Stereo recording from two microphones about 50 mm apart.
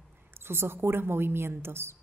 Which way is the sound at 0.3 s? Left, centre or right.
Right.